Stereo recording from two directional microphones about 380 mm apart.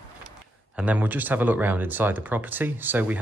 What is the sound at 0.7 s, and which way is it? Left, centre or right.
Speech, centre.